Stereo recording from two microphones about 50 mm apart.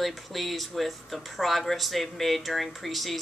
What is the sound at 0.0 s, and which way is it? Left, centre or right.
A woman's voice, centre.